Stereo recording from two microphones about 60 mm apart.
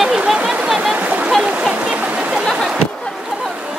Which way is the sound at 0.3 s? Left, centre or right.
Centre.